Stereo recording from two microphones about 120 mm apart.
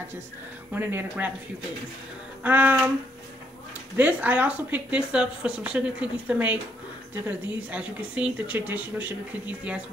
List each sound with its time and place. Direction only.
0.7 s speech: 15° right (ahead or behind)
2.4 s speech: 15° right (ahead or behind)
3.9 s speech: 15° right (ahead or behind)